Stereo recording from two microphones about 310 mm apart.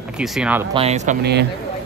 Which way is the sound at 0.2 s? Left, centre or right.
Centre.